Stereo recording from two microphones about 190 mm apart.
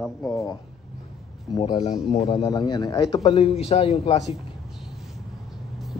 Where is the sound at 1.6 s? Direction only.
25° left (ahead or behind).